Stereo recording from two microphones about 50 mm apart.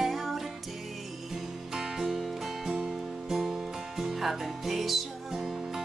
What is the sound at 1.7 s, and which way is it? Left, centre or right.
Music, centre.